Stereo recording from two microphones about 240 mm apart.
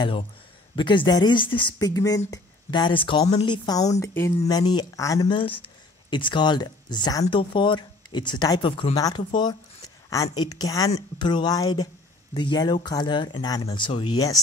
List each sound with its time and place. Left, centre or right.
0.7 s speech: centre